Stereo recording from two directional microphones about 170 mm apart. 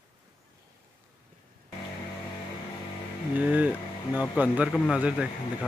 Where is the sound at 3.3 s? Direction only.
10° right (ahead or behind).